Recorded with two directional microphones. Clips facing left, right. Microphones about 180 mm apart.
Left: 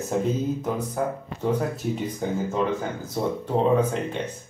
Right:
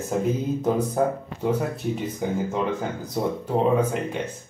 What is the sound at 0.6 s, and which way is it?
Speech, 25° right (ahead or behind).